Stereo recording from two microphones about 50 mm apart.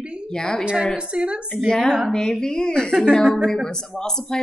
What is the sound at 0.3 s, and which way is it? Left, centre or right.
Speech, centre.